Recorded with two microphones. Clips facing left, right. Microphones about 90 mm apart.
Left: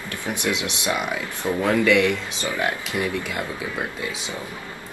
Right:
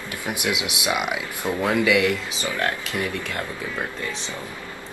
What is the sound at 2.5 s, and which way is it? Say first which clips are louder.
Speech: left 1 dB; 10° left (ahead or behind).